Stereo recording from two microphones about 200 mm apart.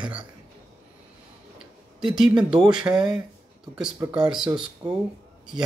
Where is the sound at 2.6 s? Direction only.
20° right (ahead or behind).